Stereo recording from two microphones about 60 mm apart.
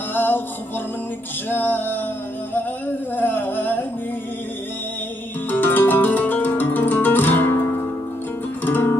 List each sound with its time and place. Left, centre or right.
0.1 s music: left
1.5 s music: left
3.2 s singing: left
5.5 s music: left
8.6 s music: left